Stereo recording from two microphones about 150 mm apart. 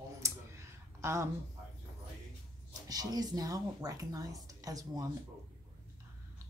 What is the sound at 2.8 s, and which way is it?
Speech, 25° right (ahead or behind).